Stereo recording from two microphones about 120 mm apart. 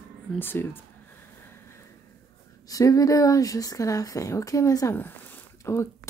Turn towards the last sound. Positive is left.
turn(degrees=20)  # may be behind; listen again after turning